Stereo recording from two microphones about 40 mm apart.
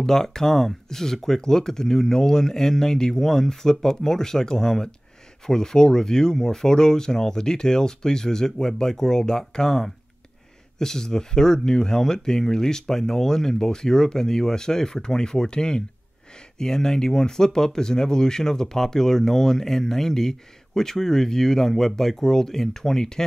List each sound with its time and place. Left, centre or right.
0.0 s speech: centre